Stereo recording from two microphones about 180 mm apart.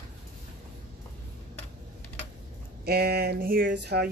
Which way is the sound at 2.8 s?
60° right (ahead or behind).